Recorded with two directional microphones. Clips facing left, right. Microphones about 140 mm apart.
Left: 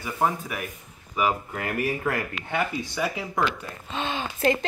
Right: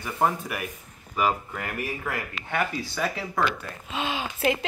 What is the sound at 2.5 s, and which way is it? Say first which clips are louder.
Speech: even; 15° left (ahead or behind).